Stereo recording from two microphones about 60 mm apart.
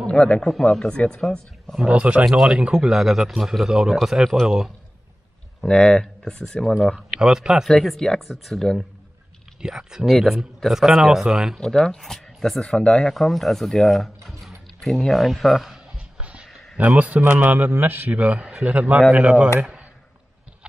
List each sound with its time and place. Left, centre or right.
0.0 s speech: centre
1.8 s a man's voice: centre
2.2 s a man's voice: centre
5.6 s speech: centre
7.1 s speech: centre
7.6 s speech: centre
9.6 s a man's voice: centre
11.5 s speech: centre
13.1 s mechanisms: centre
14.8 s speech: centre
16.2 s a sound: centre
16.7 s a man's voice: right
18.2 s a man's voice: right
19.6 s a sound: centre